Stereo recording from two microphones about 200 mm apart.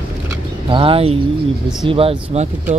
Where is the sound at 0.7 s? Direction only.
25° right (ahead or behind).